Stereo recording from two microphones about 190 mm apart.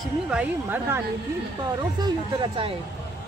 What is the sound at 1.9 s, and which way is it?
Speech, 20° right (ahead or behind).